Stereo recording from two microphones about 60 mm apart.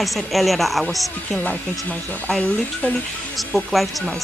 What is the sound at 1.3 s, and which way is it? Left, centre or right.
Speech, left.